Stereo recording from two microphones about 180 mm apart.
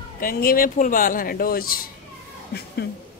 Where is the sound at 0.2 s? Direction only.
55° left (ahead or behind).